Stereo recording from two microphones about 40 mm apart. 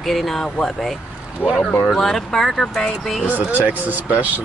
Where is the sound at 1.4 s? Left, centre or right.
Left.